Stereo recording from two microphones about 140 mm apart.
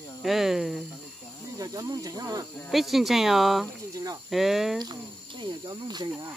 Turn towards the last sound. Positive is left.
turn(degrees=-30)  # may be behind; listen again after turning